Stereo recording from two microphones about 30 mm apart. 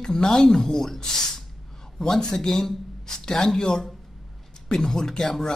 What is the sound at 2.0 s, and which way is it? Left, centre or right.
Speech, left.